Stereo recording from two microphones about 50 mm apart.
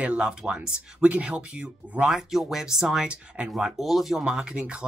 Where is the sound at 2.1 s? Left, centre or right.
Centre.